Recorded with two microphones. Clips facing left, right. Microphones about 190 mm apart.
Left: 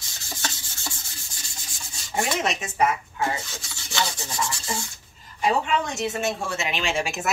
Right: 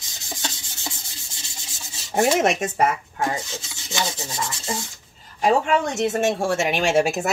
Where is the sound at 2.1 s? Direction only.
55° right (ahead or behind).